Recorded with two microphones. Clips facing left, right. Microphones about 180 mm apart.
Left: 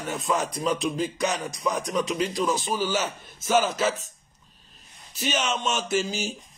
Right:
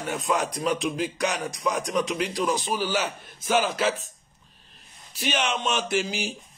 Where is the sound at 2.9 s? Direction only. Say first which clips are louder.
Even; 45° left (ahead or behind).